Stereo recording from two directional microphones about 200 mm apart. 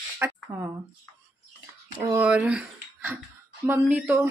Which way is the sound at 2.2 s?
5° right (ahead or behind).